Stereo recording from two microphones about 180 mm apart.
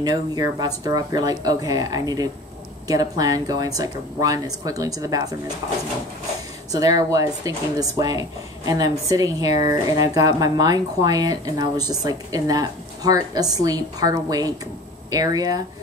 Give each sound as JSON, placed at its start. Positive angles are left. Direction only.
{"t": 0.0, "sound": "speech", "side_deg": -20}
{"t": 6.7, "sound": "speech", "side_deg": -20}